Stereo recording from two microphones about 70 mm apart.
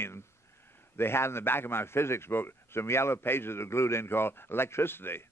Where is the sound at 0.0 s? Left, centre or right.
Left.